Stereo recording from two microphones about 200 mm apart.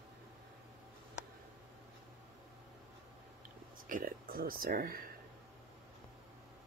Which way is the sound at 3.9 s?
45° right (ahead or behind).